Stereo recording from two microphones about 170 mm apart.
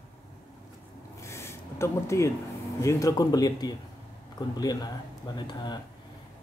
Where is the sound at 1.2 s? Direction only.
15° left (ahead or behind).